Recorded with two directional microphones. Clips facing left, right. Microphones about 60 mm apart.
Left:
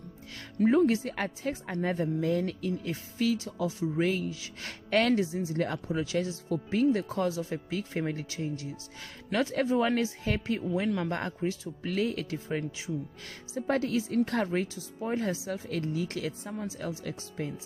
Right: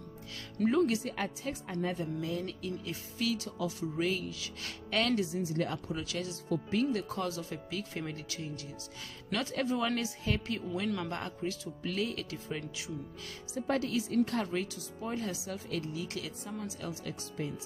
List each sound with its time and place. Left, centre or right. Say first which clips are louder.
0.6 s speech: left 5 dB; left